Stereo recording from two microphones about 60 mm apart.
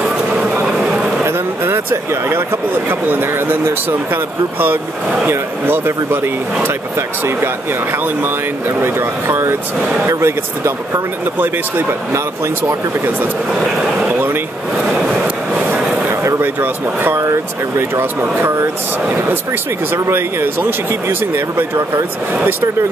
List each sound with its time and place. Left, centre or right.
0.0 s vehicle: centre
0.7 s a sound: centre
1.2 s speech: right
9.8 s speech: centre
10.0 s speech: right
13.5 s vehicle: centre
16.1 s speech: right
17.2 s speech: right
19.9 s speech: right